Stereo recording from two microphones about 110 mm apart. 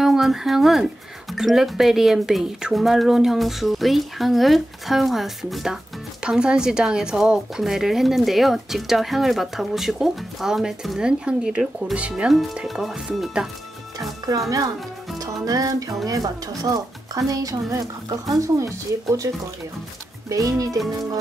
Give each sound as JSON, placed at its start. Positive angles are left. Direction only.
{"t": 0.0, "sound": "speech", "side_deg": -5}
{"t": 14.3, "sound": "speech", "side_deg": -35}